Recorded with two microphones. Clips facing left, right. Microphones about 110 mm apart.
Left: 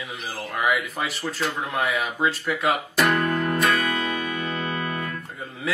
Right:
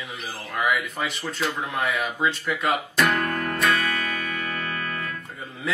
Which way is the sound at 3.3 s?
Centre (ahead or behind).